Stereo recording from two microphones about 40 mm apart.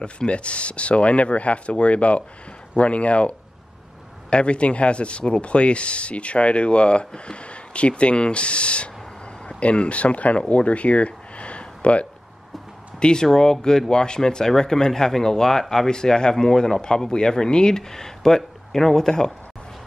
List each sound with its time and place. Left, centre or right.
0.0 s speech: left
13.0 s speech: centre